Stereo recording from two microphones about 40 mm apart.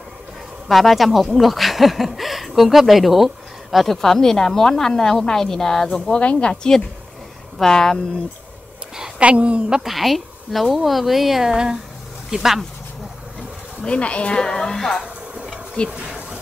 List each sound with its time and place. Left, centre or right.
0.7 s speech: centre
3.7 s a woman's voice: centre
6.1 s a woman's voice: left
6.5 s a woman's voice: centre
9.2 s a woman's voice: right
9.8 s speech: centre
13.8 s a woman's voice: left; by 15.0 s centre
15.8 s a woman's voice: left